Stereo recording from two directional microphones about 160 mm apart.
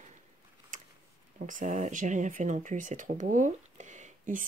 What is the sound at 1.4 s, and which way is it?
Speech, 50° right (ahead or behind).